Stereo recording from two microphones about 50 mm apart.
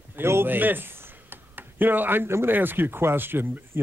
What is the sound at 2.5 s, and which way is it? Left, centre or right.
Speech, right.